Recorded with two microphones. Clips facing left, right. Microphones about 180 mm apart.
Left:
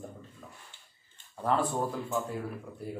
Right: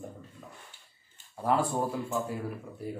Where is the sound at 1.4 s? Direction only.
10° right (ahead or behind).